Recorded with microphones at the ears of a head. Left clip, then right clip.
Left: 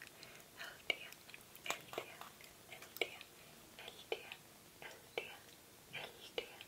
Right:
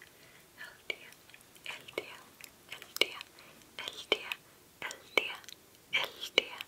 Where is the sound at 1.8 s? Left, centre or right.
Right.